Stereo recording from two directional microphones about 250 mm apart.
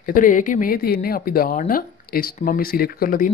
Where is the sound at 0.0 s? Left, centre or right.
Left.